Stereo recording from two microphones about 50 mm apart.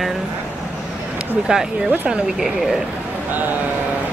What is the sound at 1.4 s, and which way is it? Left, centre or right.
Speech, centre.